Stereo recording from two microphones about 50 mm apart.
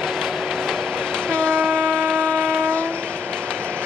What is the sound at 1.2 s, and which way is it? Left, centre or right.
Train, right.